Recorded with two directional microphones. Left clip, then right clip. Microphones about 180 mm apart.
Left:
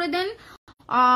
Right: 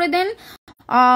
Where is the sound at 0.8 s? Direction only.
25° right (ahead or behind).